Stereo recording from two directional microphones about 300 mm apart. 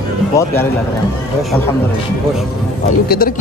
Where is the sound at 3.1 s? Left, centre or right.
Left.